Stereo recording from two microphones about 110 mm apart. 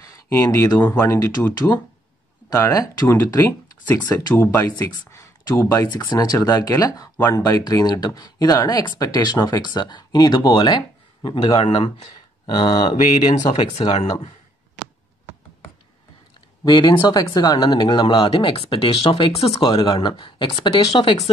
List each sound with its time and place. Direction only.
0.0 s a sound: 30° left (ahead or behind)
0.7 s speech: 15° left (ahead or behind)
1.0 s speech: 25° left (ahead or behind)
2.5 s speech: 25° left (ahead or behind)
4.0 s speech: 40° left (ahead or behind)
4.4 s speech: 25° left (ahead or behind)
5.9 s speech: 40° left (ahead or behind)
13.8 s speech: 65° left (ahead or behind)
16.6 s speech: 45° left (ahead or behind)